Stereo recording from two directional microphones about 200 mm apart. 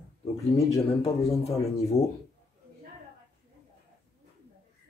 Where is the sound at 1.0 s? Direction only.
30° left (ahead or behind).